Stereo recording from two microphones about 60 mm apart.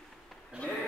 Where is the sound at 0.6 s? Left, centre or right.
Centre.